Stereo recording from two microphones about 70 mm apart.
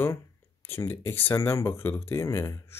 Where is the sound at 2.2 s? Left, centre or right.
Left.